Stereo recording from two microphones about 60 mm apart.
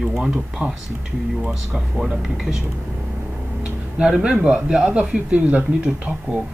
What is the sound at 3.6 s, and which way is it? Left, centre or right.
Speech, centre.